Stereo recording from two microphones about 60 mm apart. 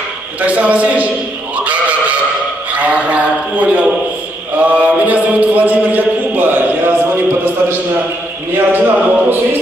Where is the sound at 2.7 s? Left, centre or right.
Right.